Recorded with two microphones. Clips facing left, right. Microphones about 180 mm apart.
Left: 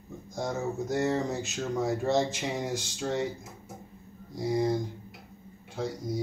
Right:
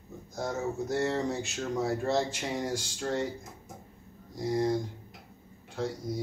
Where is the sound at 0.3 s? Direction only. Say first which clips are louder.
Left 1 dB; centre (ahead or behind).